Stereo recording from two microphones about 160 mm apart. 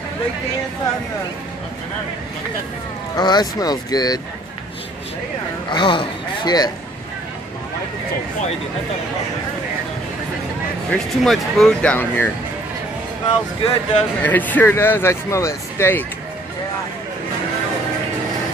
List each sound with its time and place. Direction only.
3.2 s speech: 25° left (ahead or behind)
5.7 s speech: 30° left (ahead or behind)
10.9 s speech: centre (ahead or behind)
13.6 s speech: 35° left (ahead or behind)
14.2 s speech: 10° left (ahead or behind)